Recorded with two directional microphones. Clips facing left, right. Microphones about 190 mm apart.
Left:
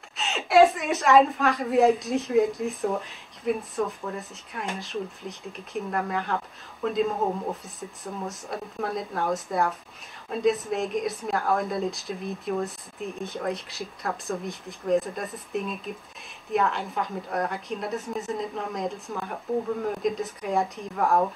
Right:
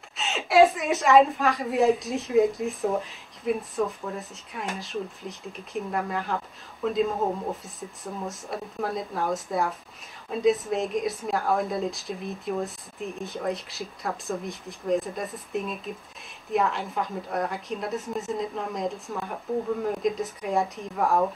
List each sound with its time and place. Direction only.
0.2 s a woman's voice: centre (ahead or behind)